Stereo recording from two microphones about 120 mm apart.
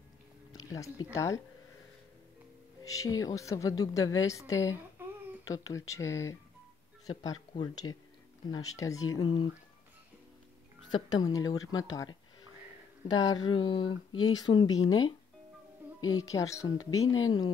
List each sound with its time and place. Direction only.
0.5 s a sound: 30° left (ahead or behind)
1.1 s speech: 25° left (ahead or behind)
2.8 s speech: 30° left (ahead or behind)
5.0 s a sound: 15° right (ahead or behind)
5.5 s speech: 25° left (ahead or behind)
7.1 s speech: 35° left (ahead or behind)
9.2 s speech: 40° left (ahead or behind)
10.9 s speech: 35° left (ahead or behind)
16.2 s speech: 30° left (ahead or behind)